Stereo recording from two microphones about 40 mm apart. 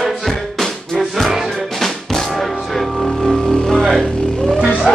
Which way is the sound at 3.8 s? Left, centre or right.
Centre.